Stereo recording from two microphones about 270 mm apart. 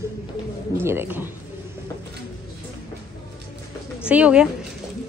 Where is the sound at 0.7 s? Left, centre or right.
Centre.